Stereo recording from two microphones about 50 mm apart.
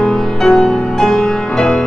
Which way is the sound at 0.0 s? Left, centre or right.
Centre.